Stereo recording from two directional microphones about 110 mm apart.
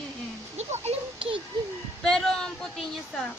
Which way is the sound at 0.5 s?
85° right.